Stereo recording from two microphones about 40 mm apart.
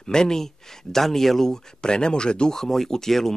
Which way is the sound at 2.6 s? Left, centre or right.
Centre.